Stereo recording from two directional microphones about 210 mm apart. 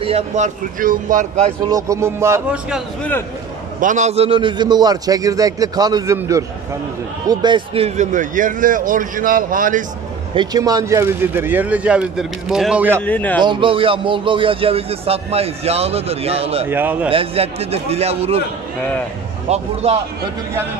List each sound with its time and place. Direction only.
0.0 s a man's voice: 30° right (ahead or behind)
1.7 s speech: 15° right (ahead or behind)
3.0 s a man's voice: 10° left (ahead or behind)
3.8 s a man's voice: 35° right (ahead or behind)
10.3 s speech: 20° right (ahead or behind)
13.0 s a man's voice: 5° left (ahead or behind)
13.4 s a man's voice: 20° right (ahead or behind)
16.6 s speech: 10° right (ahead or behind)
17.1 s a man's voice: 25° right (ahead or behind)
19.4 s a man's voice: 30° right (ahead or behind)